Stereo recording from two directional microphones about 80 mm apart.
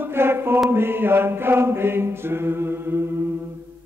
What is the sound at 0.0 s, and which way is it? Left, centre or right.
Mantra, right.